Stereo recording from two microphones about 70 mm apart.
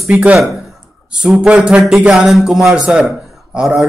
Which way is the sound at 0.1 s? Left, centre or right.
Centre.